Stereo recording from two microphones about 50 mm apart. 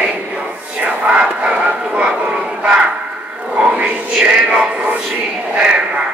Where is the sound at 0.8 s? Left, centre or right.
Right.